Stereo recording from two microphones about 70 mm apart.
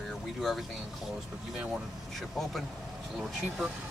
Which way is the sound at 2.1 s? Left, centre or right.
Centre.